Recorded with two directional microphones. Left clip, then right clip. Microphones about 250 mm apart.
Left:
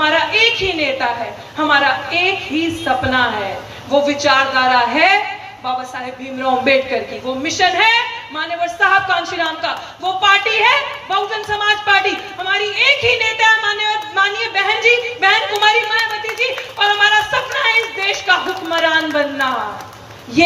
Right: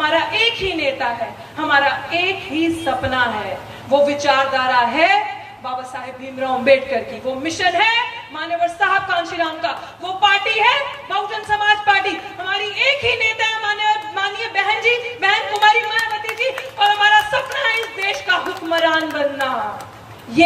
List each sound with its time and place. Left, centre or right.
0.0 s a sound: centre
1.7 s speech: centre
6.6 s speech: centre
20.4 s speech: centre